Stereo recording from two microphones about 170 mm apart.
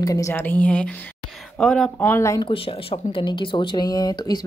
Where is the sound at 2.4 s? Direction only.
35° left (ahead or behind).